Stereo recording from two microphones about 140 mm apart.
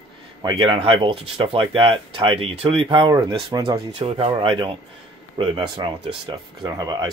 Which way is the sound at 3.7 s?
45° right (ahead or behind).